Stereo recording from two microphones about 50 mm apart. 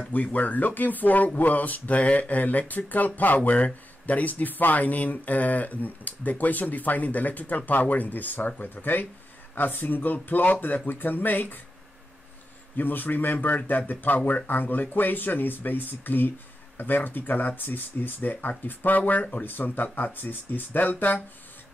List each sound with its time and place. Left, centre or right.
0.1 s speech: left
12.7 s speech: left